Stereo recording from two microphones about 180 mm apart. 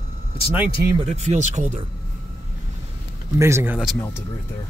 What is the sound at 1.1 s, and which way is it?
Speech, 40° right (ahead or behind).